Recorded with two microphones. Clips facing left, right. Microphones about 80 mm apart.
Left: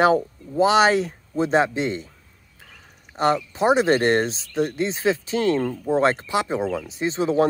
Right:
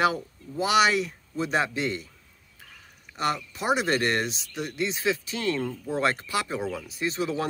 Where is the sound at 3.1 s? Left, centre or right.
Left.